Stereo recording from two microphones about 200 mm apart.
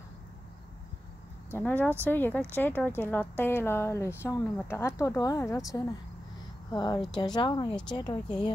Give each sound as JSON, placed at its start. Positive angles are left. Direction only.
{"t": 1.5, "sound": "speech", "side_deg": 10}
{"t": 6.7, "sound": "speech", "side_deg": 20}